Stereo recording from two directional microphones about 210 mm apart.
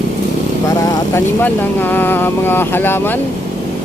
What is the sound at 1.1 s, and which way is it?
Speech, 10° left (ahead or behind).